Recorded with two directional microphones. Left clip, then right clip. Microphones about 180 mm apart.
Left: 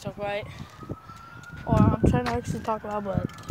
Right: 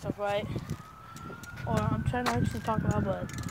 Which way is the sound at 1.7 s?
30° left (ahead or behind).